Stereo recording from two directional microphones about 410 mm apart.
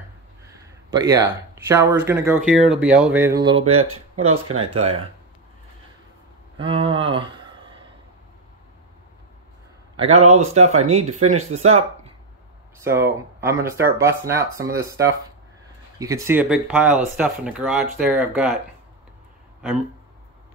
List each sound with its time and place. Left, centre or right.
0.9 s speech: centre
6.6 s a sound: centre
9.9 s speech: centre